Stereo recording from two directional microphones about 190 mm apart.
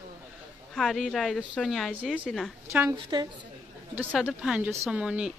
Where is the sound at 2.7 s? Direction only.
15° right (ahead or behind).